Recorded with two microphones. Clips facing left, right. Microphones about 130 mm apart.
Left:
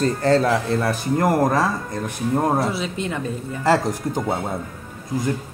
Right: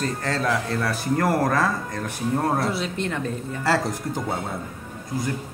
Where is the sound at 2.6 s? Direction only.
Centre (ahead or behind).